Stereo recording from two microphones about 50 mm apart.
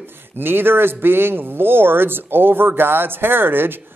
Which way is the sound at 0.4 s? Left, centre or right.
Right.